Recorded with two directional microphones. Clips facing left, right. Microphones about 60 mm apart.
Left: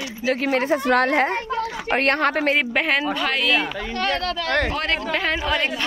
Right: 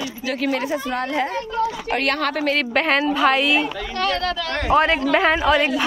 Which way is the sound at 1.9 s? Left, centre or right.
Left.